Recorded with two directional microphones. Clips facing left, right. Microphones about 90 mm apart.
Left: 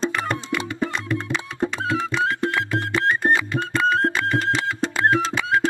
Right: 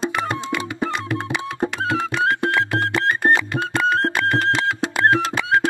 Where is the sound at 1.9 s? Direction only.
60° right (ahead or behind).